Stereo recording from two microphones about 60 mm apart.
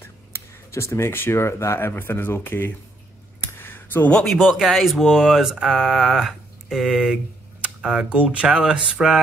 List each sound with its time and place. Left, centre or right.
0.0 s speech: left
2.0 s speech: left
3.6 s a sound: left
4.1 s speech: centre
4.4 s speech: centre
5.9 s mantra: centre
7.6 s a sound: centre
8.1 s speech: right; by 9.2 s centre